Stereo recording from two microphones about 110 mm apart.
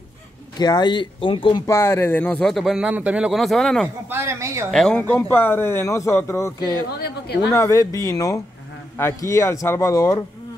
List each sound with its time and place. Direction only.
0.6 s speech: 40° left (ahead or behind)
1.7 s a man's voice: 20° left (ahead or behind)
2.4 s speech: centre (ahead or behind)
3.3 s speech: centre (ahead or behind)
4.1 s a woman's voice: 25° right (ahead or behind)
4.6 s speech: 5° left (ahead or behind)
5.0 s a man's voice: 20° left (ahead or behind)
7.5 s a man's voice: 30° left (ahead or behind)